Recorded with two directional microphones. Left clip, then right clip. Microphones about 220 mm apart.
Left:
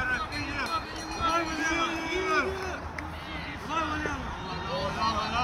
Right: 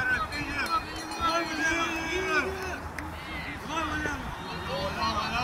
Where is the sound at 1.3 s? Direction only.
35° right (ahead or behind).